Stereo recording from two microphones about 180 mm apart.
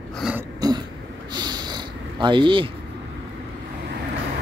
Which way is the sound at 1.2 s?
25° right (ahead or behind).